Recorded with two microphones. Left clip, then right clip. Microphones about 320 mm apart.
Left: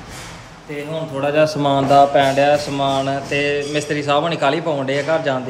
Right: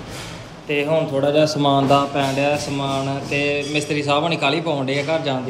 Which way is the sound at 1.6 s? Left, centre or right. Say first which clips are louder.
Left 3 dB; centre.